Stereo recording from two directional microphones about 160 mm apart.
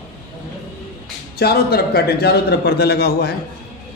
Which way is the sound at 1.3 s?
75° left (ahead or behind).